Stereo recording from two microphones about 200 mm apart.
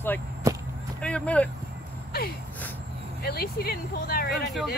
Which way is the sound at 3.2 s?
50° left (ahead or behind).